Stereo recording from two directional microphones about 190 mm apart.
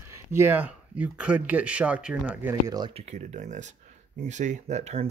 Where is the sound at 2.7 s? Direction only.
25° right (ahead or behind).